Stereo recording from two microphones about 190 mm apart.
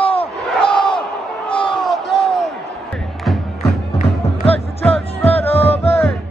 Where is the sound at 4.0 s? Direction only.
30° left (ahead or behind).